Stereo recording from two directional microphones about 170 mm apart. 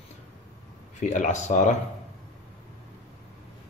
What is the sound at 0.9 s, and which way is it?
Speech, 45° left (ahead or behind).